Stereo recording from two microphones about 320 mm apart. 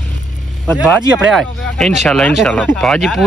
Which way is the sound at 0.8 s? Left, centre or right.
Centre.